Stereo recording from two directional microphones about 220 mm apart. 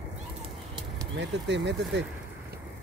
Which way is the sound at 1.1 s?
50° right (ahead or behind).